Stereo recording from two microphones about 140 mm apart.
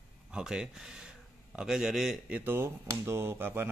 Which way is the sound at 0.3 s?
5° right (ahead or behind).